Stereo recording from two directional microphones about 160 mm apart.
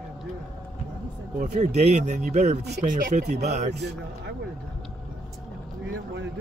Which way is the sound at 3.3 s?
45° right (ahead or behind).